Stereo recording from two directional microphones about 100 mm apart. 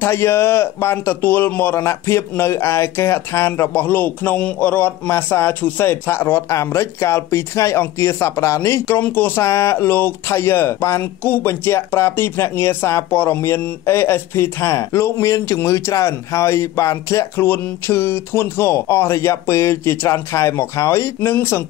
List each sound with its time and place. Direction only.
0.0 s a man's voice: 25° left (ahead or behind)